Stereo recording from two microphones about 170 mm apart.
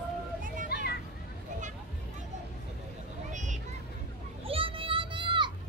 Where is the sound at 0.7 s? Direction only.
70° left (ahead or behind).